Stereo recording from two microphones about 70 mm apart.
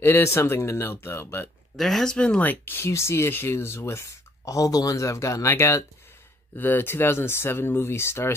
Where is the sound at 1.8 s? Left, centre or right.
Centre.